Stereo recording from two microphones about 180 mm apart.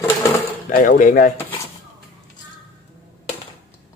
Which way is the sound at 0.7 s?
50° left (ahead or behind).